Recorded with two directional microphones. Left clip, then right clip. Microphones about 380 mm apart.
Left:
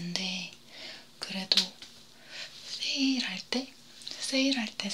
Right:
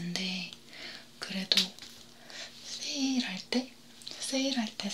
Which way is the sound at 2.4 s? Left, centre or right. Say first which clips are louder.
Left 3 dB; centre.